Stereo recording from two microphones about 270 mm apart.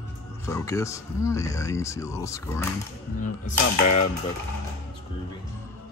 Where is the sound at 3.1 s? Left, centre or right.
Left.